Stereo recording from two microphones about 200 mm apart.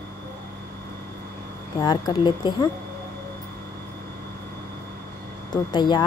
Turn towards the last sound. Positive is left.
turn(degrees=20)  # may be behind; listen again after turning